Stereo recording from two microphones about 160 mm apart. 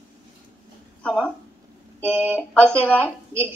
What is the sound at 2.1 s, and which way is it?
Speech, 15° right (ahead or behind).